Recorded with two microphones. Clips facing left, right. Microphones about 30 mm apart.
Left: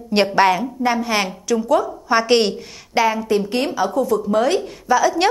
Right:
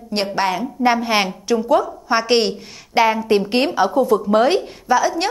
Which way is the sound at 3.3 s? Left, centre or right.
Right.